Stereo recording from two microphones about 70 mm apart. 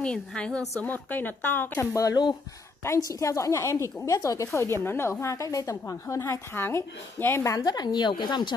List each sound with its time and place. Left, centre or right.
0.0 s a woman's voice: centre
0.7 s speech: left
3.1 s a woman's voice: left
7.4 s a woman's voice: left
7.7 s speech: left